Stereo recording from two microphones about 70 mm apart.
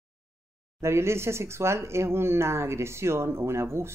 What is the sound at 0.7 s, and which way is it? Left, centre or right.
Speech, right.